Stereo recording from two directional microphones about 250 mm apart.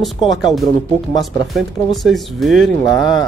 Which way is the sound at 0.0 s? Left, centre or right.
Centre.